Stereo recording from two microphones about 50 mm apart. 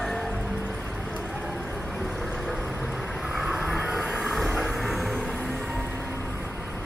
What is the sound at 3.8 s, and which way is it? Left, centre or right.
Vehicle, centre.